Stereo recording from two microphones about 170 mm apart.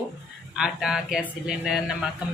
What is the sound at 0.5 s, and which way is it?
A woman's voice, 5° right (ahead or behind).